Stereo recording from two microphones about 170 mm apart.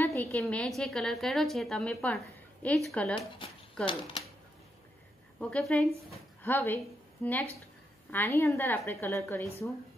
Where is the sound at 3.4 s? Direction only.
30° left (ahead or behind).